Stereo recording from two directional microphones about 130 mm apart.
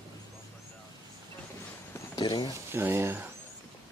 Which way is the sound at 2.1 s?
35° left (ahead or behind).